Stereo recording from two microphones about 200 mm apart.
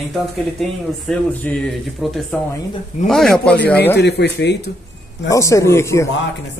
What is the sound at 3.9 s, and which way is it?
Speech, 55° left (ahead or behind).